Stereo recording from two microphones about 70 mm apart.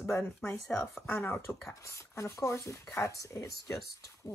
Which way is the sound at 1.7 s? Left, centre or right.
Left.